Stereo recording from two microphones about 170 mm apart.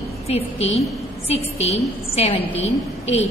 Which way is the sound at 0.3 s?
35° left (ahead or behind).